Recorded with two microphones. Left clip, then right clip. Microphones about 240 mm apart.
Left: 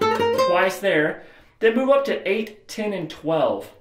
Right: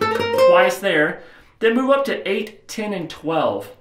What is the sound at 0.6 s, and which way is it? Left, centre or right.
Speech, centre.